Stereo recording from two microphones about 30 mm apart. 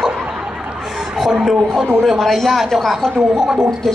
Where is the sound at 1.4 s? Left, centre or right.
Centre.